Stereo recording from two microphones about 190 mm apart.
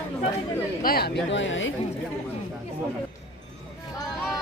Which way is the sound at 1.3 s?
75° left (ahead or behind).